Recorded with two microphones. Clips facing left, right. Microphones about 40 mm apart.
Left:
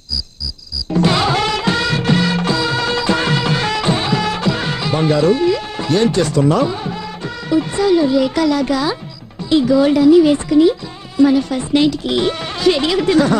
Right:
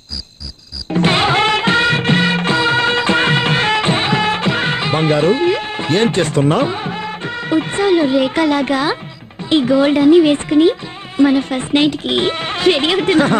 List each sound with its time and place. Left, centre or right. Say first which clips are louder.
0.9 s music of bollywood: right 1 dB; right
9.5 s speech: even; right